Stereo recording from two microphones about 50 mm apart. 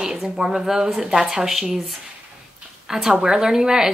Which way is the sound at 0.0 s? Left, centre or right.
Centre.